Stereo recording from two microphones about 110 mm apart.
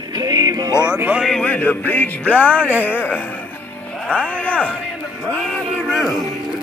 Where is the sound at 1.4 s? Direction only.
15° left (ahead or behind).